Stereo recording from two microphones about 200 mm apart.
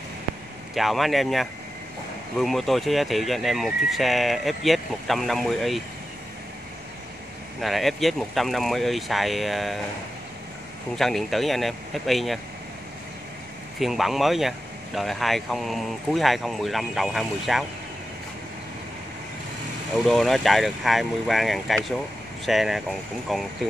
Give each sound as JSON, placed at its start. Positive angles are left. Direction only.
{"t": 0.7, "sound": "speech", "side_deg": 0}
{"t": 7.6, "sound": "speech", "side_deg": 0}
{"t": 11.0, "sound": "speech", "side_deg": 0}
{"t": 13.7, "sound": "speech", "side_deg": 0}
{"t": 20.1, "sound": "speech", "side_deg": 0}